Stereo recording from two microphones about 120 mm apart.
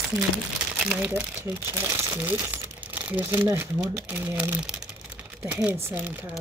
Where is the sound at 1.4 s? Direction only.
20° right (ahead or behind).